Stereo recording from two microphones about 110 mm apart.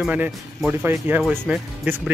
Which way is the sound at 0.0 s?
15° right (ahead or behind).